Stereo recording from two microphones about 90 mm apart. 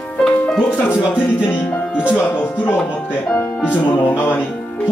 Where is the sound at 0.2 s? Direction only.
5° left (ahead or behind).